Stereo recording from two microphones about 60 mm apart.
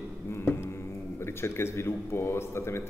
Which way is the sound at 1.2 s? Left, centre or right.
Left.